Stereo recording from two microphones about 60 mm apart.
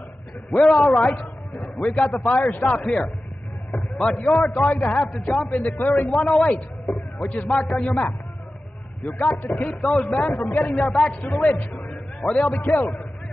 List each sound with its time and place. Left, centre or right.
0.7 s a man's voice: left
9.2 s a man's voice: left